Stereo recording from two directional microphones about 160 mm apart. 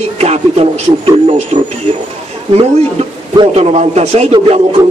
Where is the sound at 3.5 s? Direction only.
40° right (ahead or behind).